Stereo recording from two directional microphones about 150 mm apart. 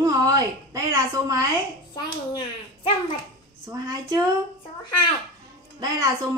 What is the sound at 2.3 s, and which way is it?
Speech, 30° left (ahead or behind).